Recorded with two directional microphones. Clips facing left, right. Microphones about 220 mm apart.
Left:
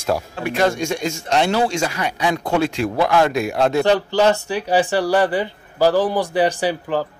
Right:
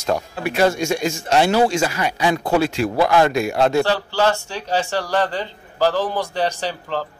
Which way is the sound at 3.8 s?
15° left (ahead or behind).